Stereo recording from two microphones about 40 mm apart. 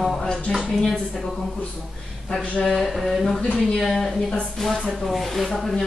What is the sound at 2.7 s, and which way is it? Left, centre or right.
Speech, centre.